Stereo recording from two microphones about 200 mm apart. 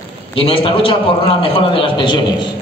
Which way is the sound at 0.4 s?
25° left (ahead or behind).